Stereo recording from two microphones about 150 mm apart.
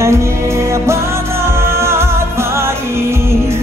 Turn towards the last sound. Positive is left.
turn(degrees=-15)  # may be behind; listen again after turning